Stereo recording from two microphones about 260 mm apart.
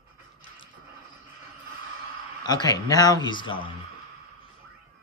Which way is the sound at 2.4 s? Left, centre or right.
Centre.